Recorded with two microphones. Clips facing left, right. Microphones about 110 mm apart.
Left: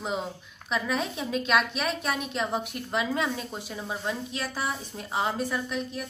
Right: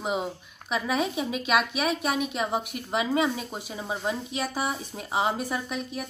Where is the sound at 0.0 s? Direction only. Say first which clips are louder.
Right 2 dB; 10° right (ahead or behind).